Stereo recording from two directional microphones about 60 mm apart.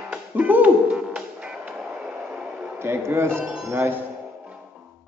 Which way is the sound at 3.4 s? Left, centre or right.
Centre.